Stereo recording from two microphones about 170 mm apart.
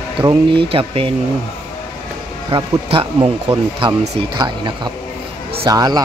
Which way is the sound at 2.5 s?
30° right (ahead or behind).